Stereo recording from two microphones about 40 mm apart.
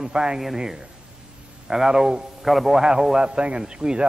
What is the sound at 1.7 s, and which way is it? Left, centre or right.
A man's voice, centre.